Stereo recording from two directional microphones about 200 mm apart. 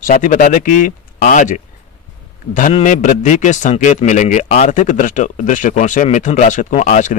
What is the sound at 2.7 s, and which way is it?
Speech, 40° left (ahead or behind).